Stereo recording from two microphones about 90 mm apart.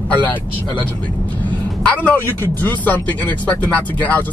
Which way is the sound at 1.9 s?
20° left (ahead or behind).